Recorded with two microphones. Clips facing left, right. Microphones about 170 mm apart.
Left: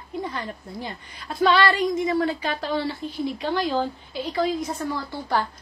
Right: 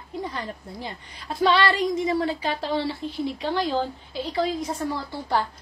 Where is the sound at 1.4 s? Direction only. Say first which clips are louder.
Left 1 dB; 30° right (ahead or behind).